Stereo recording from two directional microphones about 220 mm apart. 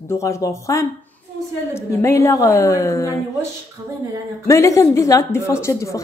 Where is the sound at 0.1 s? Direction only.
15° left (ahead or behind).